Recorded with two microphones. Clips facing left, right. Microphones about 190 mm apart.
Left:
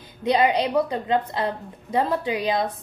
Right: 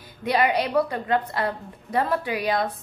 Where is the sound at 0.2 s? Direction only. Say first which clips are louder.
Left 2 dB; 20° left (ahead or behind).